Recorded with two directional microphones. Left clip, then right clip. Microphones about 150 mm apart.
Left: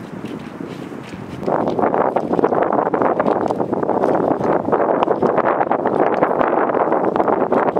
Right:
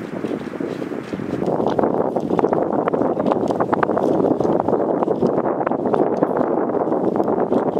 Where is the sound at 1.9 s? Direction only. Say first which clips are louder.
Left 3 dB; 20° left (ahead or behind).